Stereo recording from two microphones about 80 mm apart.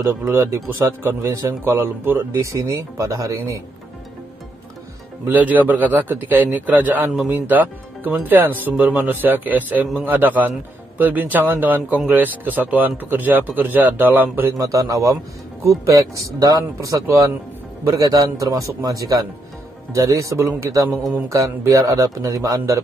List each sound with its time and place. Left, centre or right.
0.2 s speech: right
1.6 s speech: right
5.2 s speech: right
14.6 s a man's voice: right
16.2 s a man's voice: right